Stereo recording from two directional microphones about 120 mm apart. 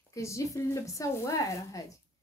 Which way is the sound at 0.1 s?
25° left (ahead or behind).